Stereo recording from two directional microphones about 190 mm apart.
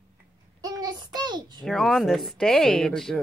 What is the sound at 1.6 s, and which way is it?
Speech, centre (ahead or behind).